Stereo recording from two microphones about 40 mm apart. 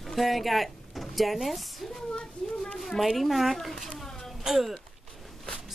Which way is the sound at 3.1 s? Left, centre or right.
Centre.